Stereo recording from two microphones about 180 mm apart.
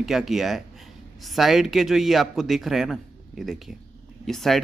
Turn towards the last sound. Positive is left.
turn(degrees=0)  # may be behind; listen again after turning